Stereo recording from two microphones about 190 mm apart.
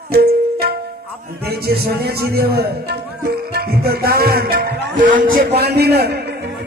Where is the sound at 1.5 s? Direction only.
55° right (ahead or behind).